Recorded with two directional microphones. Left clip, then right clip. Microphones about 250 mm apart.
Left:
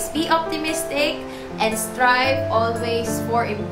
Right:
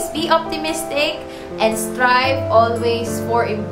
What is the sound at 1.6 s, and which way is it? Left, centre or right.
Music, centre.